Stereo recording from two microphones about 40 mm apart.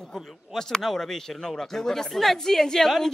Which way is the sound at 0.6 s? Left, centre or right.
Centre.